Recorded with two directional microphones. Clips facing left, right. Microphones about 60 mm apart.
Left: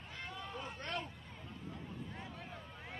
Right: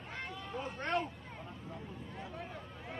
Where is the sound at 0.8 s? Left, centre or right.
Right.